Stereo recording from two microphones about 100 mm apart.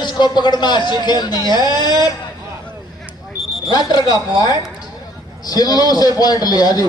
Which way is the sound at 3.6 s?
40° left (ahead or behind).